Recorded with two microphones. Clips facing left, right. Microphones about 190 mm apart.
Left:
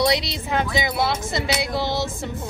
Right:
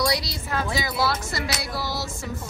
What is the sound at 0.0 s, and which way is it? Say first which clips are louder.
Speech: left 4 dB; 20° left (ahead or behind).